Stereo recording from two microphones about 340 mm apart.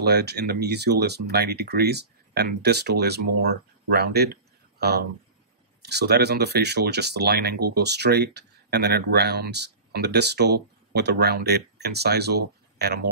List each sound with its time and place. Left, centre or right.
0.0 s speech: right